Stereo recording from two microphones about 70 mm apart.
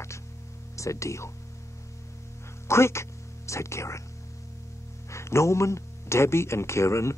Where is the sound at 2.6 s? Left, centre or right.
Left.